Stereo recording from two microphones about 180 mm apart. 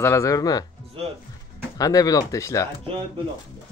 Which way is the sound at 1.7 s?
20° left (ahead or behind).